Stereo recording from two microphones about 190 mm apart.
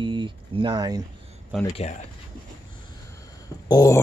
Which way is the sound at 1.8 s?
35° left (ahead or behind).